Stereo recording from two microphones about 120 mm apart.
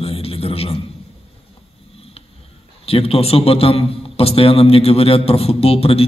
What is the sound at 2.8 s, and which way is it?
A man's voice, 55° left (ahead or behind).